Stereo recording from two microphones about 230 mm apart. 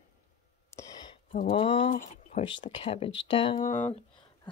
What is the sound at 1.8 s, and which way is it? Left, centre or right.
Speech, left.